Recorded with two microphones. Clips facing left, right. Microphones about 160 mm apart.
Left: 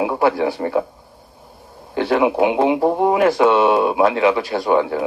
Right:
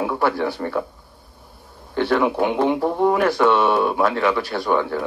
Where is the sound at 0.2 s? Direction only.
10° left (ahead or behind).